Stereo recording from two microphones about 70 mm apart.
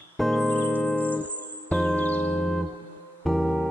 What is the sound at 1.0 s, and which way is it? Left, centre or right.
Music, left.